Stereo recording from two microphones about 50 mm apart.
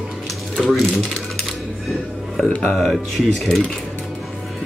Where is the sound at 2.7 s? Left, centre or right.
Centre.